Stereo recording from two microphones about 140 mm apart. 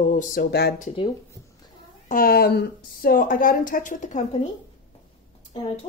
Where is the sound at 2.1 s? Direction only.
90° left; by 4.2 s 65° left (ahead or behind).